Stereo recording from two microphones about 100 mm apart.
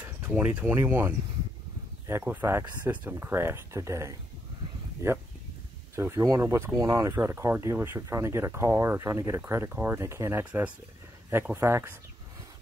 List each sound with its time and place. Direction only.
0.3 s speech: 15° right (ahead or behind)
10.4 s speech: 10° right (ahead or behind)
11.5 s speech: 25° right (ahead or behind)